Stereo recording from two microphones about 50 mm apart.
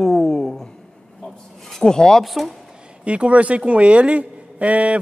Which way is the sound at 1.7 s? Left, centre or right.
Centre.